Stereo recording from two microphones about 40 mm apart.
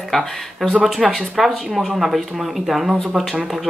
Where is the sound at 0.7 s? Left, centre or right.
Centre.